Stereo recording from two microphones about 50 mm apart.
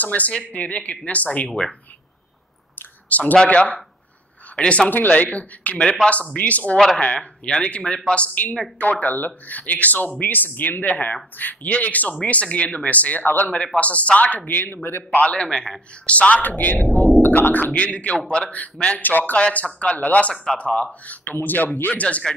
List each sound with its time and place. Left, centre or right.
0.0 s speech: left
3.1 s speech: left
9.0 s speech: left
15.0 s speech: left
15.3 s a man's voice: centre
16.1 s speech: left
16.8 s speech: right
17.4 s speech: left
18.9 s speech: left
19.3 s speech: left